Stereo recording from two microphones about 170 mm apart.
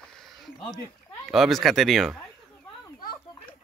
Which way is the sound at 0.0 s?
Centre (ahead or behind).